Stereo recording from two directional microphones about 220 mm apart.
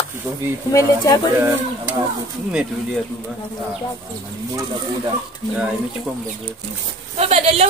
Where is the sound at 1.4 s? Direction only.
10° right (ahead or behind).